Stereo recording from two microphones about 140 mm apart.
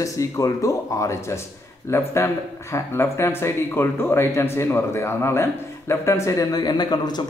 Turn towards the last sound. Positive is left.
turn(degrees=30)  # may be behind; listen again after turning